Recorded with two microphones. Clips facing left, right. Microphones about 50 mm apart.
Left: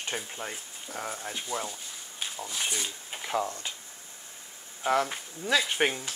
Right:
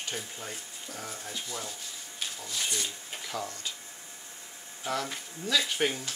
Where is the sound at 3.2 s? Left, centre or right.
Left.